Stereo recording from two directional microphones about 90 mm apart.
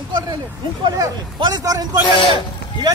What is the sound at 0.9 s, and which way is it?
Speech, 50° right (ahead or behind).